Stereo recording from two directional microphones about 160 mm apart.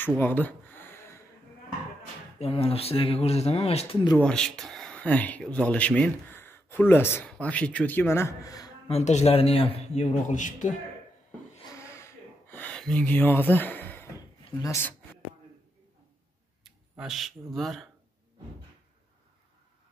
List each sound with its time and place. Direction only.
0.2 s a sound: 10° left (ahead or behind)
2.3 s speech: 40° left (ahead or behind)
4.2 s speech: 5° left (ahead or behind); by 8.7 s 25° left (ahead or behind)
8.8 s a man's voice: 45° left (ahead or behind)
11.7 s a sound: 15° left (ahead or behind)
14.6 s speech: 15° left (ahead or behind)
16.6 s speech: centre (ahead or behind)